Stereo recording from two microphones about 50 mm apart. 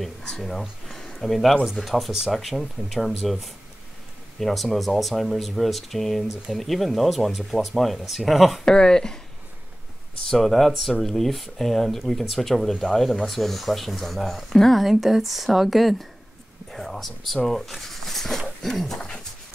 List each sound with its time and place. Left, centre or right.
0.5 s speech: centre
0.9 s a sound: centre
1.8 s speech: centre
8.6 s speech: centre
10.3 s speech: centre
18.6 s a sound: centre
18.9 s dog: centre